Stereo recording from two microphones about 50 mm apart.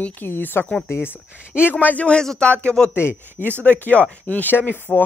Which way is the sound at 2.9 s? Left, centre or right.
Left.